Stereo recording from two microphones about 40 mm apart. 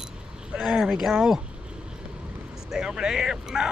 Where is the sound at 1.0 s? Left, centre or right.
Centre.